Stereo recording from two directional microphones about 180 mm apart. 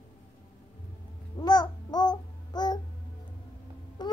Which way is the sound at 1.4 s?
20° left (ahead or behind).